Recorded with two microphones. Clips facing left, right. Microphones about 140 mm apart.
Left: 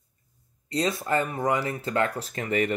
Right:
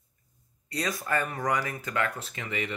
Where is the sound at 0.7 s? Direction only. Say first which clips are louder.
Left 5 dB; 30° left (ahead or behind).